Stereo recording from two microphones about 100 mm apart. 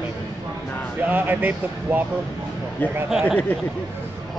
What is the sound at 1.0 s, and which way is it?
Speech, 20° right (ahead or behind).